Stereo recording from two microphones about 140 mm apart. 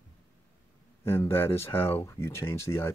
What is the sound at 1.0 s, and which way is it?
Speech, 15° left (ahead or behind).